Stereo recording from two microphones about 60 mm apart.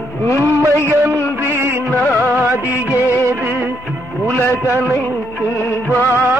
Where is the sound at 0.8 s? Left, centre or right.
Right.